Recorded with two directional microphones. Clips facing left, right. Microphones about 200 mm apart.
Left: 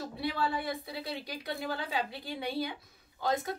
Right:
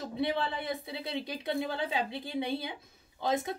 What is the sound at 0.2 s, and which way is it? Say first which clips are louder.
Speech: right 1 dB; 20° right (ahead or behind).